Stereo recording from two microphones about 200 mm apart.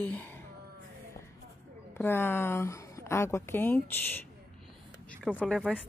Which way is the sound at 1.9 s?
10° left (ahead or behind).